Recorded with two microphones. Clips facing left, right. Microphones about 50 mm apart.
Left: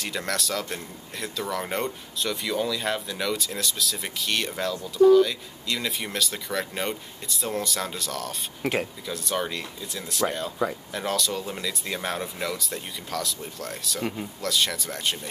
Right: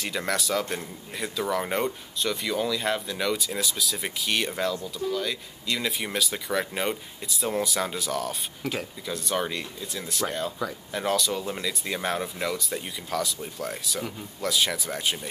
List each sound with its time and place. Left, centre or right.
0.0 s speech: centre
8.6 s speech: left
9.0 s speech: centre